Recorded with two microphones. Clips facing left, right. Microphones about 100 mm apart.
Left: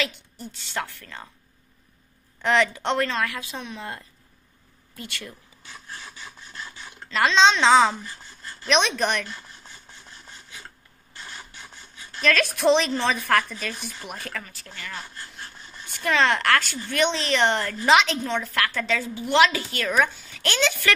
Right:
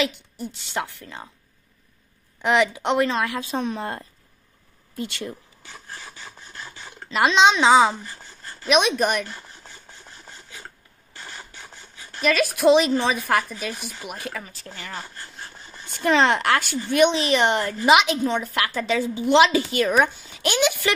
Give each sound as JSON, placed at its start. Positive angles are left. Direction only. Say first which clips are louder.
{"t": 0.0, "sound": "speech", "louder": "right 5 dB", "side_deg": -15}
{"t": 2.4, "sound": "speech", "louder": "right 2 dB", "side_deg": -15}
{"t": 3.3, "sound": "a woman's voice", "louder": "right 8 dB", "side_deg": -40}
{"t": 4.9, "sound": "a woman's voice", "louder": "right 7 dB", "side_deg": -25}
{"t": 5.7, "sound": "filing", "louder": "right 1 dB", "side_deg": 0}
{"t": 7.1, "sound": "speech", "louder": "right 1 dB", "side_deg": -15}
{"t": 8.6, "sound": "a sound", "louder": "right 3 dB", "side_deg": -10}
{"t": 11.1, "sound": "speech", "louder": "right 1 dB", "side_deg": 0}
{"t": 14.4, "sound": "a woman's voice", "louder": "right 2 dB", "side_deg": -25}
{"t": 15.1, "sound": "sawing", "louder": "right 1 dB", "side_deg": -5}
{"t": 15.8, "sound": "a woman's voice", "louder": "right 3 dB", "side_deg": -25}